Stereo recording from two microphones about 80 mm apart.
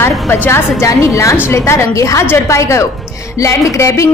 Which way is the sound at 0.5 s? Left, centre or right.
Left.